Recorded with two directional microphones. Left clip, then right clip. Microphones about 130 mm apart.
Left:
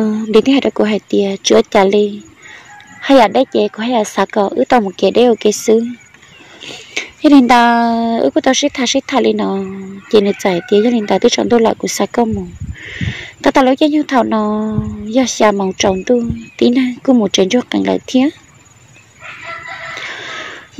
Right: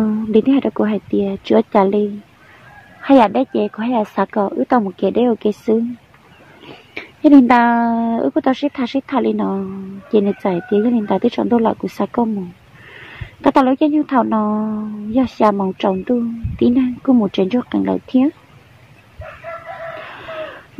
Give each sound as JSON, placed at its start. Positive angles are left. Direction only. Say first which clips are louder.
{"t": 0.0, "sound": "a woman's voice", "louder": "left 4 dB", "side_deg": 15}
{"t": 20.1, "sound": "chicken", "louder": "left 4 dB", "side_deg": 10}